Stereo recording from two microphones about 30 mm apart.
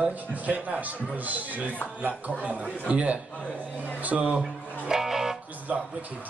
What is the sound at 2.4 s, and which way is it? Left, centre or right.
Speech, right.